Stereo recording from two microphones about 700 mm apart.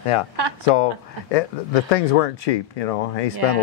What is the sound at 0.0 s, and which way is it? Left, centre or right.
Speech, left.